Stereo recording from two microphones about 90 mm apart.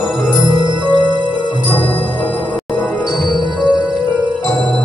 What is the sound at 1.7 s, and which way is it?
Music, 25° left (ahead or behind).